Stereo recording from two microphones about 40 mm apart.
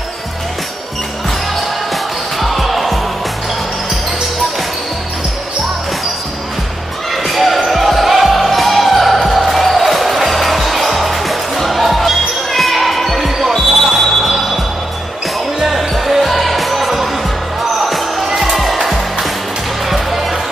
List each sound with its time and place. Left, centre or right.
2.4 s music: centre
7.2 s basketball bounce: centre
13.8 s a sound: centre
15.6 s basketball bounce: centre
17.7 s music: centre